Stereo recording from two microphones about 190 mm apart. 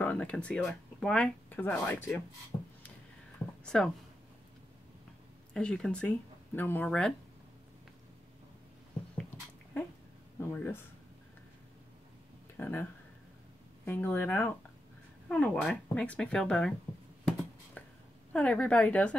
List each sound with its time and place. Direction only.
0.0 s speech: 5° left (ahead or behind)
2.5 s a sound: 20° left (ahead or behind)
3.6 s speech: centre (ahead or behind)
5.5 s speech: 5° left (ahead or behind)
10.4 s a woman's voice: 10° left (ahead or behind)
12.5 s speech: 10° left (ahead or behind)
13.8 s a woman's voice: 10° left (ahead or behind)
17.2 s a sound: 5° left (ahead or behind)
18.3 s a woman's voice: 5° left (ahead or behind)